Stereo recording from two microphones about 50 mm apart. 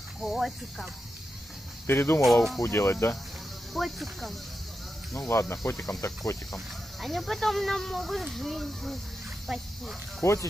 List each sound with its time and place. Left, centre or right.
0.2 s speech: centre
1.9 s speech: left
3.7 s speech: centre
5.3 s speech: left
5.9 s cricket: left
7.0 s speech: centre
10.2 s speech: left